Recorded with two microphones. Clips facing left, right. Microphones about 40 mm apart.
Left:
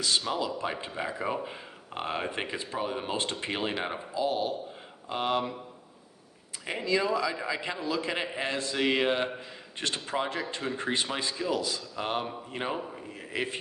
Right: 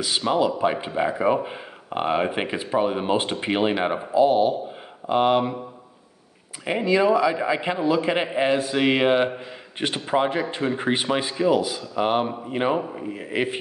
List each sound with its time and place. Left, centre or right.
0.2 s speech: right
6.6 s speech: right